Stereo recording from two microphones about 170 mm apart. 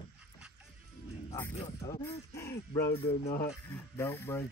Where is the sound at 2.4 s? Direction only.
15° left (ahead or behind).